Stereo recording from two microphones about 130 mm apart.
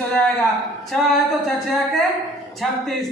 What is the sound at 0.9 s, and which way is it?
Speech, centre (ahead or behind).